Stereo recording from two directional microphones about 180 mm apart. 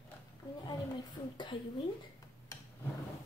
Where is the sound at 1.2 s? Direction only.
20° left (ahead or behind).